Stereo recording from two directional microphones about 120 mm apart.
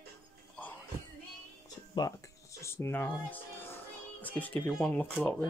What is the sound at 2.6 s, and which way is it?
Speech, 20° left (ahead or behind).